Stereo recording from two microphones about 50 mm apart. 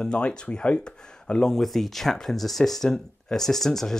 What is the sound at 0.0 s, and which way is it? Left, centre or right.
Speech, centre.